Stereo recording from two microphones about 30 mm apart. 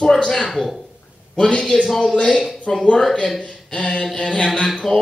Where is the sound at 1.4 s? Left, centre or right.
Left.